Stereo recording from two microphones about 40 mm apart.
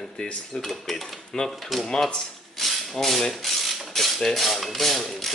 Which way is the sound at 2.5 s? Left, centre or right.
Centre.